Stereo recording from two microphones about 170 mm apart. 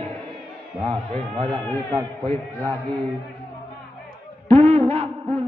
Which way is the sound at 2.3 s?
10° left (ahead or behind).